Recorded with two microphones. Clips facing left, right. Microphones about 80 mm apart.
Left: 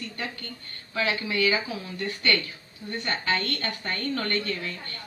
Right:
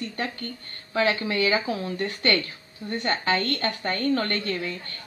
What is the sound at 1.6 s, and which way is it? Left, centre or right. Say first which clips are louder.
Speech: right 5 dB; right.